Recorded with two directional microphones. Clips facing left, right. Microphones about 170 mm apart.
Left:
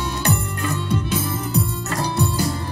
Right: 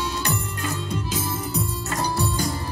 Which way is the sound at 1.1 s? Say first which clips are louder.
Left 4 dB; 60° left (ahead or behind).